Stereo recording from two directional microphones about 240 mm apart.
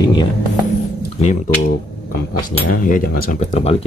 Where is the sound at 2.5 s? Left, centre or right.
Left.